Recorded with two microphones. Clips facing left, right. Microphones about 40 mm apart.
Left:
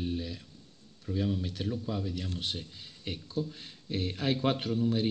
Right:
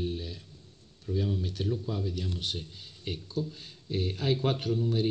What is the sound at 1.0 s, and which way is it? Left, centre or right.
A man's voice, centre.